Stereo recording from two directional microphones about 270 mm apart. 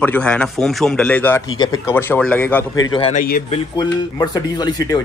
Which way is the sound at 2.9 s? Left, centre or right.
Left.